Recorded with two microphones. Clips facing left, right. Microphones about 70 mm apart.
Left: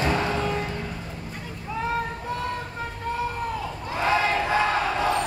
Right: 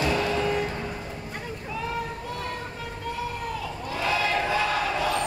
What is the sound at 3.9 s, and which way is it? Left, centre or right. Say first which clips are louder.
Crowd: left 3 dB; left.